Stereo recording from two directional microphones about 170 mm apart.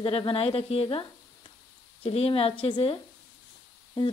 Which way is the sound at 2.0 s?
35° left (ahead or behind).